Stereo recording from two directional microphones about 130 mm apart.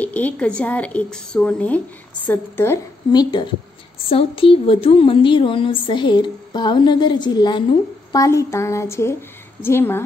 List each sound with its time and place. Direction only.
0.0 s a woman's voice: 10° left (ahead or behind)
3.1 s speech: 35° left (ahead or behind)
4.1 s speech: 45° left (ahead or behind)
8.1 s a woman's voice: 25° left (ahead or behind)